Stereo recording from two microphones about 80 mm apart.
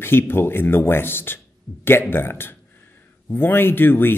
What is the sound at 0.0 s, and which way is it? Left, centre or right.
Speech, left.